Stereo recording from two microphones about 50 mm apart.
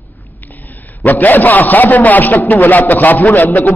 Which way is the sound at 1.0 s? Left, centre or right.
Left.